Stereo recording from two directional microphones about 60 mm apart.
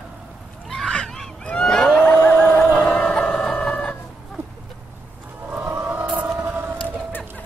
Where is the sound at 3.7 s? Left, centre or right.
Left.